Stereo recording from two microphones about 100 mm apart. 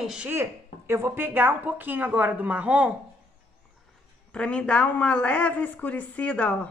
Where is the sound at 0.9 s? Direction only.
25° right (ahead or behind).